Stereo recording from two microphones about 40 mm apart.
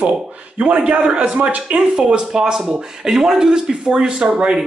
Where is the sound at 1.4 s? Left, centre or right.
Right.